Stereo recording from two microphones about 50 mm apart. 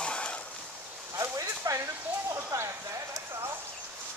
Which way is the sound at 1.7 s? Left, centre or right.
Right.